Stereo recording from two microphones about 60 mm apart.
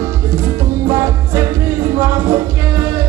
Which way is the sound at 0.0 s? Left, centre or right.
Right.